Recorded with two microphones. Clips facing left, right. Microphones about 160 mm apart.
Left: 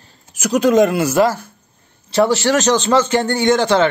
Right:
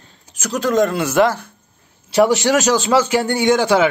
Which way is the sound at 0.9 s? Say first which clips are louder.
Left 1 dB; centre (ahead or behind).